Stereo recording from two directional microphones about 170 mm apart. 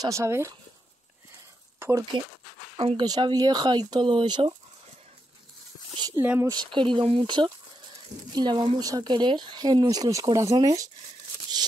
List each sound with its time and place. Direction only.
0.0 s speech: 15° right (ahead or behind)
1.8 s speech: 15° right (ahead or behind)
2.8 s speech: 30° right (ahead or behind)
5.9 s a sound: 20° right (ahead or behind)
6.2 s speech: 10° right (ahead or behind)
6.5 s speech: 30° right (ahead or behind)